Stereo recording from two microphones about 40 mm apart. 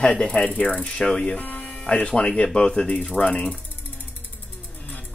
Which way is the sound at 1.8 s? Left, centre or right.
Left.